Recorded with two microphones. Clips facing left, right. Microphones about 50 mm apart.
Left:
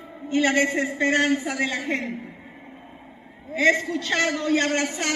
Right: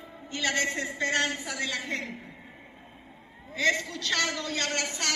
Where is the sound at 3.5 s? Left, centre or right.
Left.